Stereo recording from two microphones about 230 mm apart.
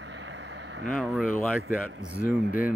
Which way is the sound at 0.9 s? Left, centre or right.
Centre.